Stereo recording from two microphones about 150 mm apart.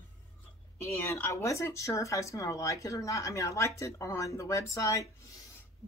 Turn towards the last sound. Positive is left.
turn(degrees=20)  # may be behind; listen again after turning